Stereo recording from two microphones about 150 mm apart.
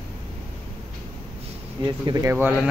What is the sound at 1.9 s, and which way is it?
Speech, 25° right (ahead or behind).